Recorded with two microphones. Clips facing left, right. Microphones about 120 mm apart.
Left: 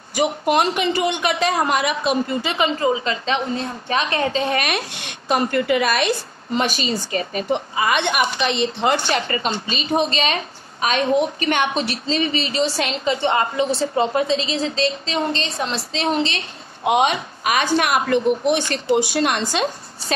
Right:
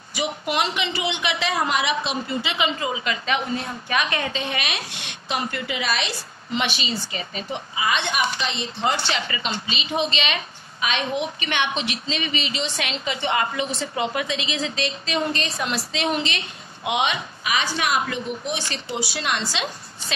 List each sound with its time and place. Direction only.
0.1 s a man's voice: 45° left (ahead or behind)